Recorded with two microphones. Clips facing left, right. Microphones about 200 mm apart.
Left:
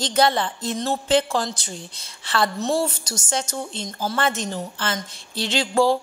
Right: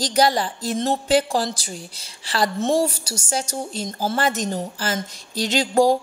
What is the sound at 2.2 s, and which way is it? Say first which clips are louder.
Speech: right 1 dB; 35° right (ahead or behind).